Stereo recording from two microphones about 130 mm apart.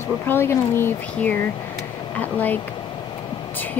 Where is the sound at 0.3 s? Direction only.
20° left (ahead or behind).